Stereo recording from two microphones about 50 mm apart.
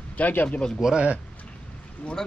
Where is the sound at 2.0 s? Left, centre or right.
Left.